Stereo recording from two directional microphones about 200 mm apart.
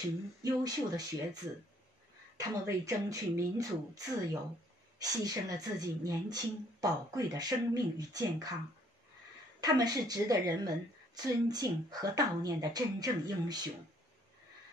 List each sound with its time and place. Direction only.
0.4 s a woman's voice: 20° right (ahead or behind)
2.3 s a woman's voice: 15° right (ahead or behind)
9.6 s a woman's voice: 20° right (ahead or behind)